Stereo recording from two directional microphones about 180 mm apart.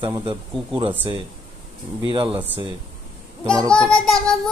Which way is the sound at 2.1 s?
30° right (ahead or behind).